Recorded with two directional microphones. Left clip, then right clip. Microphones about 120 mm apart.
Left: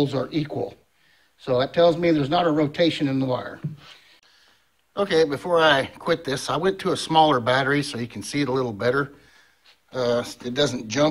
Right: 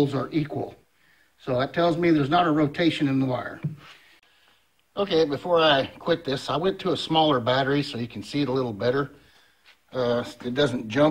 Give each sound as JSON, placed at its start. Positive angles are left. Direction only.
{"t": 0.0, "sound": "speech", "side_deg": 40}
{"t": 4.9, "sound": "speech", "side_deg": 35}
{"t": 9.8, "sound": "speech", "side_deg": 10}